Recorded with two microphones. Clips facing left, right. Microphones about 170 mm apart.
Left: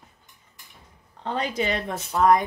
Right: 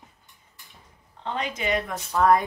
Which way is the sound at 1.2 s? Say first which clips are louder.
Left 3 dB; 35° left (ahead or behind).